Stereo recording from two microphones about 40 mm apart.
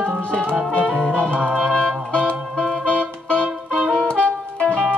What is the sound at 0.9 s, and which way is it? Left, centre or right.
Music, centre.